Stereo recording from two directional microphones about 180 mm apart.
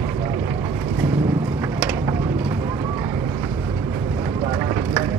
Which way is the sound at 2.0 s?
15° right (ahead or behind).